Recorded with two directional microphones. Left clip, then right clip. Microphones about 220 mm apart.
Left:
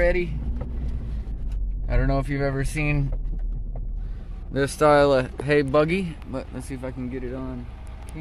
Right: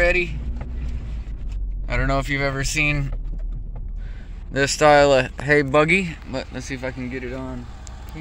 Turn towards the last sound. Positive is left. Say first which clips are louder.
# right 2 dB
turn(degrees=0)  # may be behind; listen again after turning